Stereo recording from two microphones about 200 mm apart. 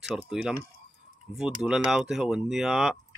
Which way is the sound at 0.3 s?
5° right (ahead or behind).